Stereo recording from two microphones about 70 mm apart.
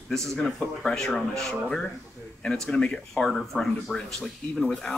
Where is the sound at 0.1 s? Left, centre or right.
Centre.